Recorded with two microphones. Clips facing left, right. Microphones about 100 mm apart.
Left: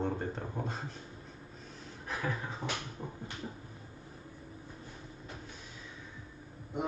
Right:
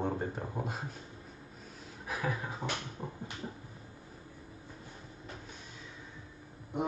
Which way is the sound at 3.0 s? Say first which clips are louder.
Right 1 dB; 20° right (ahead or behind).